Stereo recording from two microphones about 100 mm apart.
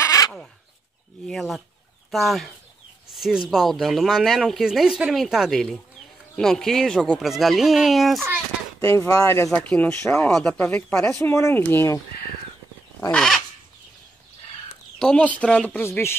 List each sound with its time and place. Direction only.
0.0 s a sound: 35° left (ahead or behind)
1.2 s speech: centre (ahead or behind)
8.8 s speech: 25° left (ahead or behind)
9.6 s speech: 15° left (ahead or behind)
10.6 s speech: 20° left (ahead or behind)
13.1 s speech: 5° left (ahead or behind)
15.0 s speech: 10° left (ahead or behind)